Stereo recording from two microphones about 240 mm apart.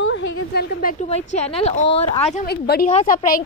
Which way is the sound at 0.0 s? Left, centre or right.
Left.